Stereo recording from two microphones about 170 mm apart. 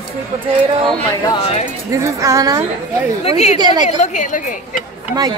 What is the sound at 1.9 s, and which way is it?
Speech, 20° right (ahead or behind).